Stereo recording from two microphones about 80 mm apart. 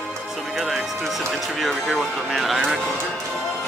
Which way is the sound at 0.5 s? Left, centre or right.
Centre.